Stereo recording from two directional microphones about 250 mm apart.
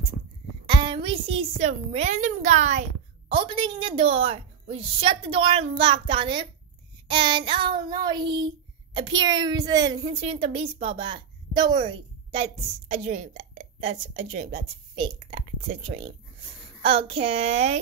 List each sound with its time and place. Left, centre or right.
0.7 s a child's voice: centre